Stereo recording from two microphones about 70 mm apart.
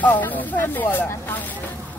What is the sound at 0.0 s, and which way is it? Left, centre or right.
Speech, left.